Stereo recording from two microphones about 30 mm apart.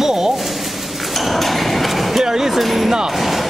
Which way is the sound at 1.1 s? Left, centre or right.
Centre.